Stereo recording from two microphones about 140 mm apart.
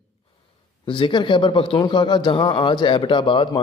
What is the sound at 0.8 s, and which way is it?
A man's voice, 35° left (ahead or behind).